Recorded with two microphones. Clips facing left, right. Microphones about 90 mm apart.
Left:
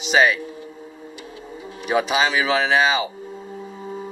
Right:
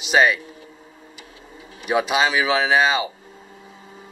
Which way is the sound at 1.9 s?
Centre (ahead or behind).